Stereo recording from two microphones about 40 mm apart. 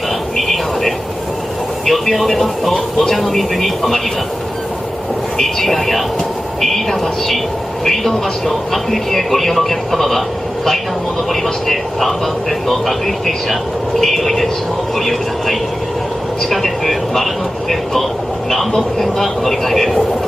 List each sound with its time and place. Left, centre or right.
0.4 s radio: centre
1.9 s a man's voice: centre
5.4 s a man's voice: centre